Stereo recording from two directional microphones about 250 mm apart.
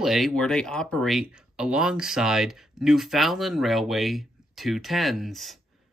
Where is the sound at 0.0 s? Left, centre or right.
Centre.